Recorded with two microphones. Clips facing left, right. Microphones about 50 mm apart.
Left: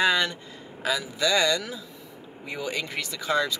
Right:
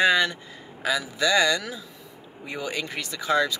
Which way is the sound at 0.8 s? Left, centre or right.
Centre.